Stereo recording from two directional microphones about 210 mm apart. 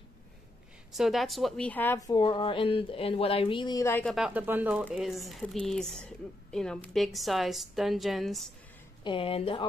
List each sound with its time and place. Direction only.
0.9 s a woman's voice: centre (ahead or behind)
9.0 s speech: 25° left (ahead or behind)